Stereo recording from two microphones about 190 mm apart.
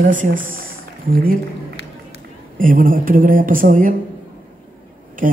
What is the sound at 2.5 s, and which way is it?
Speech, 45° right (ahead or behind).